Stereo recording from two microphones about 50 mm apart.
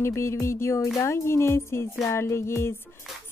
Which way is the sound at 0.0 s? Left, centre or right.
Left.